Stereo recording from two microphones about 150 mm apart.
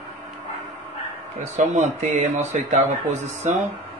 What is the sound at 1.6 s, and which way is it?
A man's voice, 50° right (ahead or behind).